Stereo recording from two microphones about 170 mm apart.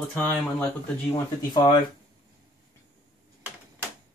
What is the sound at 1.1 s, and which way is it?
Speech, 25° left (ahead or behind).